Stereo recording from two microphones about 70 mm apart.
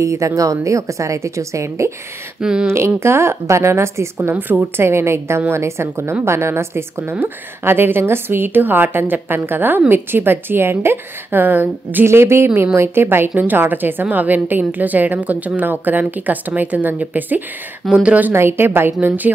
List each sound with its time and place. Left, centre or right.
0.0 s a woman's voice: right
2.4 s speech: centre
3.0 s a woman's voice: right
17.8 s speech: centre
18.3 s a woman's voice: right